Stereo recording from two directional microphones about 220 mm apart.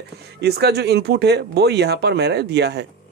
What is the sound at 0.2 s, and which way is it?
Speech, 50° right (ahead or behind).